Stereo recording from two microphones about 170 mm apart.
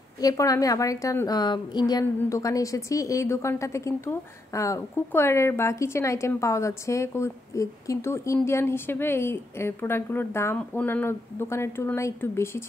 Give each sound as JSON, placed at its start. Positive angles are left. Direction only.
{"t": 0.2, "sound": "a woman's voice", "side_deg": 20}